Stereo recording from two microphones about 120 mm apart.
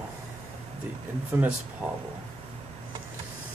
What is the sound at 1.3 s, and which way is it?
Speech, 20° right (ahead or behind).